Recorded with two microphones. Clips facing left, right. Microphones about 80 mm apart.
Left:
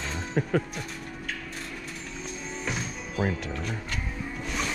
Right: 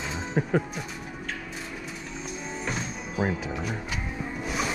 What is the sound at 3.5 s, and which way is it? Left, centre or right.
Music, centre.